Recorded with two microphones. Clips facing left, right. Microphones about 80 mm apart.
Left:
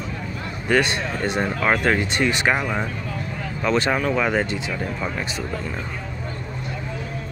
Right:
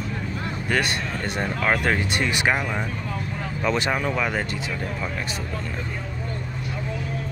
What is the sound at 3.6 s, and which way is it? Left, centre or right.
Speech, centre.